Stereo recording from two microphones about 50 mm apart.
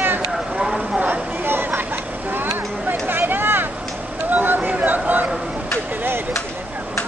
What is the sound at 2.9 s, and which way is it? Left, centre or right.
Chatter, right.